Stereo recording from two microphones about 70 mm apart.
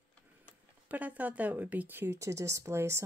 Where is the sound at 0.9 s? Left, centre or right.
Right.